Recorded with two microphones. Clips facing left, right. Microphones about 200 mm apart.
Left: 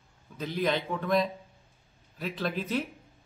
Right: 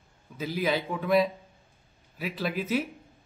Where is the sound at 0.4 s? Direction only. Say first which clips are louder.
Right 1 dB; 5° right (ahead or behind).